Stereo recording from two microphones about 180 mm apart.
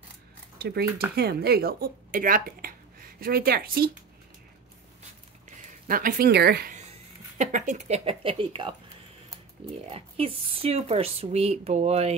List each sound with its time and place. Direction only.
0.6 s speech: 60° right (ahead or behind)
5.9 s speech: 50° right (ahead or behind)
7.3 s speech: 45° right (ahead or behind)
9.8 s speech: 30° right (ahead or behind)